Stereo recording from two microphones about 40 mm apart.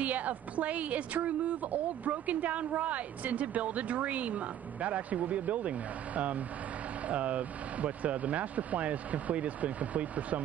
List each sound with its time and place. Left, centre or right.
0.0 s a woman's voice: right